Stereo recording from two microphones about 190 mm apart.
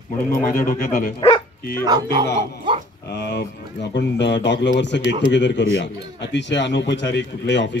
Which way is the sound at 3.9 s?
65° left (ahead or behind).